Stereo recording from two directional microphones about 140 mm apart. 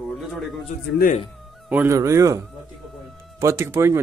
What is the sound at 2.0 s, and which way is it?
Speech, 25° right (ahead or behind).